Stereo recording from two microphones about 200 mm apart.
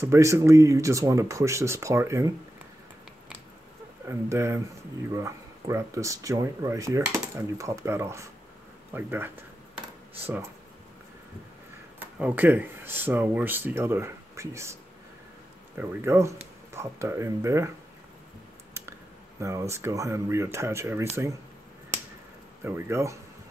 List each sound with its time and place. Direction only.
0.0 s speech: 15° right (ahead or behind)
4.1 s speech: 15° right (ahead or behind)
12.0 s speech: 10° right (ahead or behind)
15.8 s speech: 10° right (ahead or behind)
18.7 s a sound: 15° right (ahead or behind)
19.7 s speech: 15° right (ahead or behind)
22.6 s speech: 10° right (ahead or behind)